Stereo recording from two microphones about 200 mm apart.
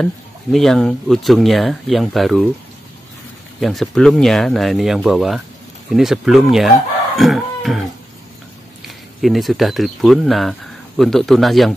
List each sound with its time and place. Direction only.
0.0 s speech: centre (ahead or behind)
3.6 s speech: centre (ahead or behind)